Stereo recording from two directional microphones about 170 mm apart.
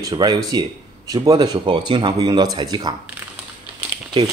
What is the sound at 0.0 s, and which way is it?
Speech, 25° right (ahead or behind).